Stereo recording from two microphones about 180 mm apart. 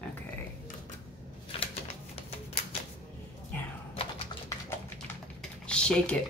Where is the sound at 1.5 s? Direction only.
30° left (ahead or behind).